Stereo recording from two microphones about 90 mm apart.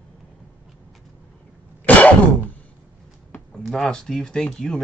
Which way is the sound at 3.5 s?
5° left (ahead or behind).